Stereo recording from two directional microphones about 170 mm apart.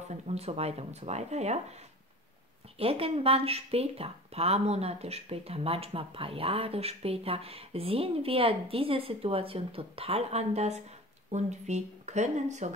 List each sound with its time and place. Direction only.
0.1 s speech: 40° right (ahead or behind)
2.8 s speech: 35° right (ahead or behind)